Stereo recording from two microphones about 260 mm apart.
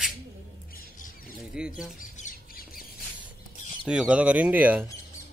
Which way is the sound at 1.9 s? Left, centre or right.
Left.